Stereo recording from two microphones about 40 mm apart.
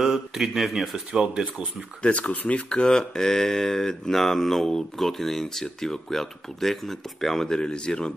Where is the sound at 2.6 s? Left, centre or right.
Centre.